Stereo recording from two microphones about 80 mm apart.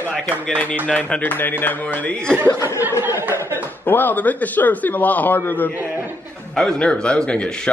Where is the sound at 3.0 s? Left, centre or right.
Right.